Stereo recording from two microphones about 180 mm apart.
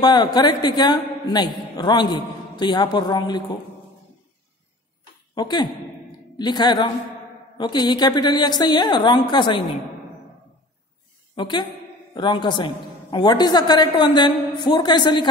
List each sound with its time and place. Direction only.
0.0 s a man's voice: 25° left (ahead or behind)
5.3 s a woman's voice: 25° left (ahead or behind)
11.3 s a woman's voice: 25° left (ahead or behind)